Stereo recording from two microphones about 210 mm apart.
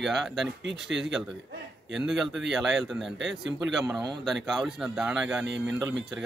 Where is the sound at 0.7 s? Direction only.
55° right (ahead or behind).